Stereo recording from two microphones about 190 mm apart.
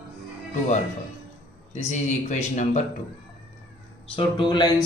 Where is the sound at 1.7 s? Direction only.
40° left (ahead or behind).